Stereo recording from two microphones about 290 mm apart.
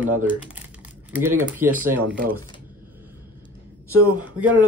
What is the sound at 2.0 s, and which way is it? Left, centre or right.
Speech, right.